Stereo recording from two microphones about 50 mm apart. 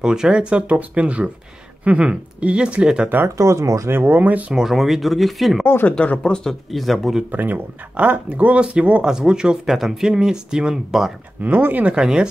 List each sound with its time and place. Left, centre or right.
0.0 s speech: centre
3.3 s speech: right
3.9 s speech: right
4.6 s speech: centre
5.9 s speech: left
6.1 s speech: centre
6.7 s speech: centre
7.2 s speech: right
9.0 s speech: centre
9.7 s speech: centre
11.4 s speech: right
11.8 s speech: centre